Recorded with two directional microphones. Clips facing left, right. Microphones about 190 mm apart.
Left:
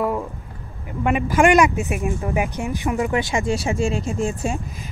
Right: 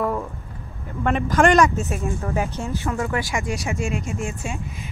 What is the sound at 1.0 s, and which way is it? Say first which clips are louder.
Speech: left 1 dB; 10° left (ahead or behind).